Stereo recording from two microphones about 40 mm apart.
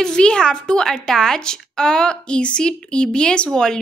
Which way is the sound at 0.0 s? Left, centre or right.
Centre.